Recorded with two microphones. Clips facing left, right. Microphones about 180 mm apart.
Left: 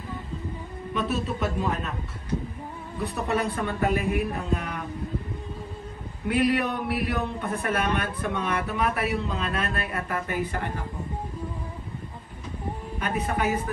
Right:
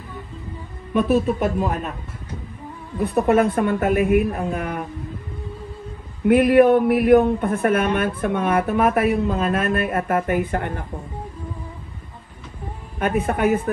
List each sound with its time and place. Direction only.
0.9 s speech: 55° right (ahead or behind)
3.0 s speech: 50° right (ahead or behind)
6.2 s speech: 55° right (ahead or behind)
13.0 s speech: 50° right (ahead or behind)